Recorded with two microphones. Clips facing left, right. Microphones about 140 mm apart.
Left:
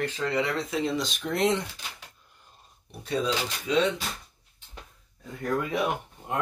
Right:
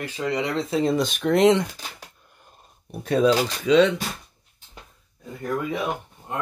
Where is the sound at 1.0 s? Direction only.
60° right (ahead or behind); by 1.6 s 85° right.